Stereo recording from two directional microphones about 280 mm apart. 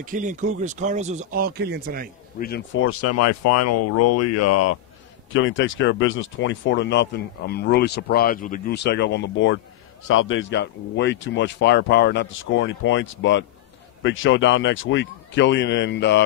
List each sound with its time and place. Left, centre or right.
0.0 s speech: right
2.3 s speech: left
5.3 s speech: left